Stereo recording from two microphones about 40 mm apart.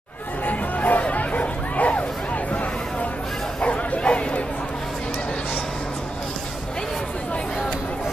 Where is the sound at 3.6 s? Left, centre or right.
Left.